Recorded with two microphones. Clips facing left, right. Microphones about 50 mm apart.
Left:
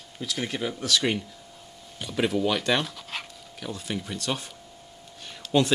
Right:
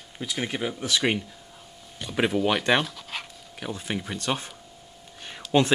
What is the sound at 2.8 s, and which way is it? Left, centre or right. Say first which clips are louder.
Dog: right 1 dB; centre.